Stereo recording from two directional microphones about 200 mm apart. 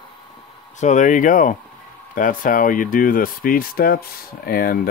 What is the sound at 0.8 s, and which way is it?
Speech, 40° left (ahead or behind).